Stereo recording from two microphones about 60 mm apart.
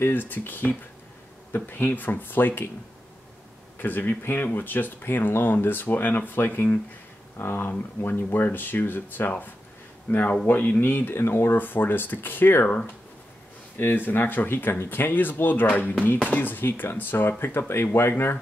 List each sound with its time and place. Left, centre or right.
0.0 s speech: left
3.7 s speech: left